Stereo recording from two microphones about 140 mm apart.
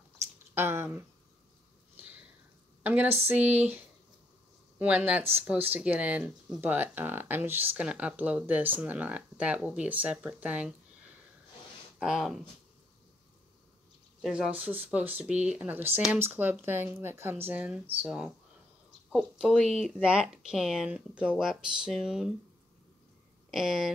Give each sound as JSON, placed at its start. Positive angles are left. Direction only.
{"t": 0.6, "sound": "speech", "side_deg": -15}
{"t": 2.0, "sound": "sniff", "side_deg": -10}
{"t": 2.8, "sound": "a woman's voice", "side_deg": -10}
{"t": 12.0, "sound": "speech", "side_deg": 0}
{"t": 14.2, "sound": "speech", "side_deg": -5}
{"t": 23.5, "sound": "speech", "side_deg": -5}